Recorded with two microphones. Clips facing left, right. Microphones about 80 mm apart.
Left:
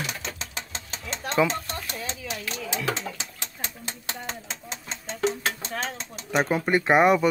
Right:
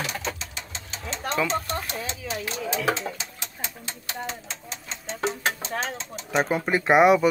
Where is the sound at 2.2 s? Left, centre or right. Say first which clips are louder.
Right 6 dB; right.